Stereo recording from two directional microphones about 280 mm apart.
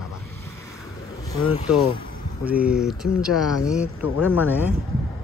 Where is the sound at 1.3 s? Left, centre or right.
Centre.